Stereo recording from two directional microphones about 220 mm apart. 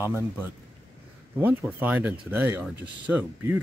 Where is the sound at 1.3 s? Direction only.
10° right (ahead or behind).